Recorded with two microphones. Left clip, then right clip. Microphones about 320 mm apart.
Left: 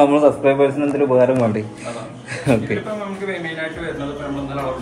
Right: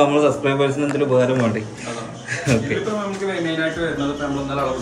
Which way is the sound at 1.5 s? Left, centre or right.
Centre.